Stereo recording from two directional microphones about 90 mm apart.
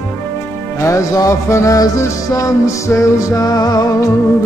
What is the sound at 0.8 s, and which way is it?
Music, 35° left (ahead or behind).